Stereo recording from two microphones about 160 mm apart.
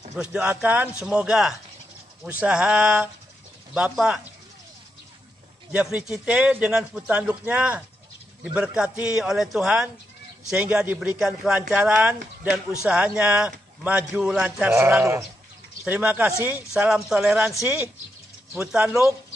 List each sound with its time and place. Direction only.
0.1 s a man's voice: 5° right (ahead or behind)
5.7 s a man's voice: 10° right (ahead or behind)